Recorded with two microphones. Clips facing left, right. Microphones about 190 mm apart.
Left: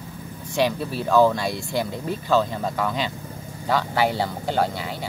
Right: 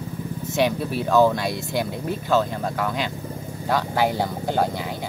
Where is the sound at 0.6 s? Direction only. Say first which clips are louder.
Right 1 dB; 15° right (ahead or behind).